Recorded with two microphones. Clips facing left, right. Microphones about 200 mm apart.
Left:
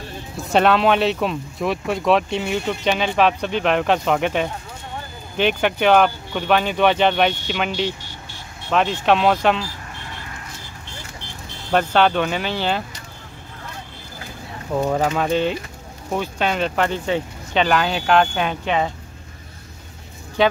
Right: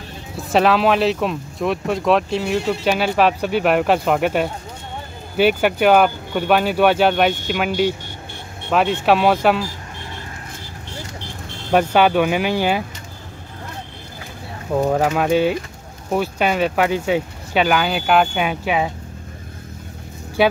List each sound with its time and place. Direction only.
0.5 s speech: centre (ahead or behind)
8.7 s speech: 5° right (ahead or behind)
11.7 s speech: 10° right (ahead or behind)
14.9 s speech: 5° right (ahead or behind)
20.4 s speech: 10° right (ahead or behind)